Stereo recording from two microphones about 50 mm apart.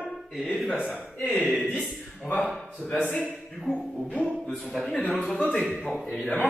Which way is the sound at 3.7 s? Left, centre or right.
Centre.